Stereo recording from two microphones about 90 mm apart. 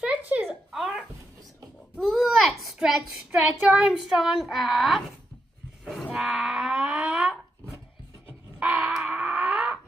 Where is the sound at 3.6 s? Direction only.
5° right (ahead or behind).